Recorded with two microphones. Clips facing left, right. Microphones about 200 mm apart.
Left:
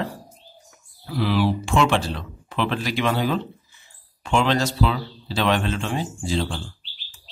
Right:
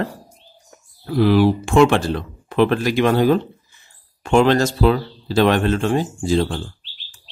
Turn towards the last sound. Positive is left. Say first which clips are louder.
# right 7 dB
turn(degrees=-50)  # may be behind; listen again after turning